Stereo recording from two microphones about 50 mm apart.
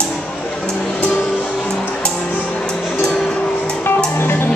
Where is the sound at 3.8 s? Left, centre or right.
Left.